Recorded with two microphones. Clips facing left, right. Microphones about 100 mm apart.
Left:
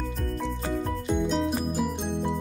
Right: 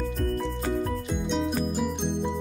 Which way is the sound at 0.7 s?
Centre (ahead or behind).